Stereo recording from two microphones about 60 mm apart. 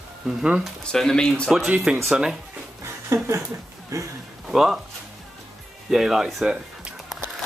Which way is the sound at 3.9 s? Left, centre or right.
Right.